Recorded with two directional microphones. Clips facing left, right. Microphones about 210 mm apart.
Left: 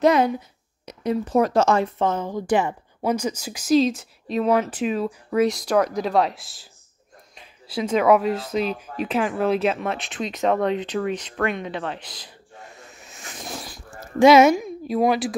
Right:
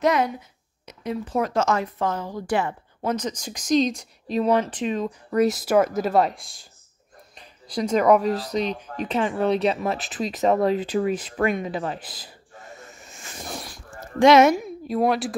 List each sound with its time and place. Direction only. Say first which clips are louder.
0.0 s speech: left 4 dB; 30° left (ahead or behind); by 12.3 s 5° right (ahead or behind)
14.2 s a woman's voice: left 2 dB; centre (ahead or behind)